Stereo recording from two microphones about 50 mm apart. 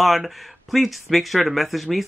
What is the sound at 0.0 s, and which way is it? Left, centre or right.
Speech, centre.